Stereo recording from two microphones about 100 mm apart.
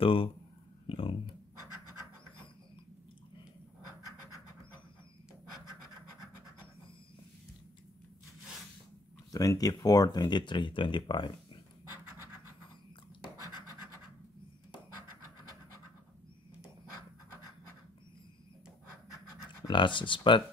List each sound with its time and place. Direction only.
0.0 s speech: 65° left (ahead or behind)
9.3 s speech: 35° left (ahead or behind); by 11.3 s 55° left (ahead or behind)
13.4 s scratch: 40° left (ahead or behind)
19.7 s speech: 55° left (ahead or behind)